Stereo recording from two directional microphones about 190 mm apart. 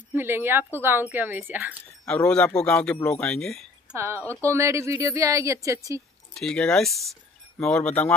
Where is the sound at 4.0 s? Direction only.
15° right (ahead or behind).